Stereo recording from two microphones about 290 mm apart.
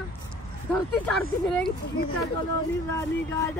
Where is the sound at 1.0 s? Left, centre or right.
Centre.